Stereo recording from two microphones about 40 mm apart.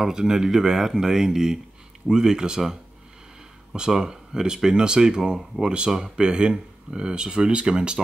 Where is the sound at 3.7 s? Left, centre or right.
Centre.